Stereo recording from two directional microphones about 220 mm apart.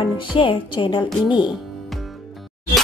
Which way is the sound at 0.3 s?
25° left (ahead or behind).